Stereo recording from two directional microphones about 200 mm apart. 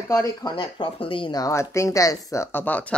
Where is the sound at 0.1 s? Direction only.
20° left (ahead or behind).